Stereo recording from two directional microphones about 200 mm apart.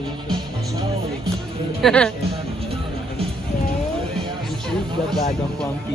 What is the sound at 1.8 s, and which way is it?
Speech, 5° left (ahead or behind).